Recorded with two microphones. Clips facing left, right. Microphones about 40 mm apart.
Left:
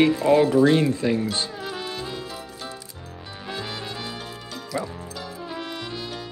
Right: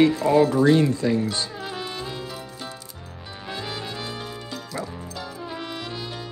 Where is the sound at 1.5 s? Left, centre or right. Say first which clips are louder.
Even; centre.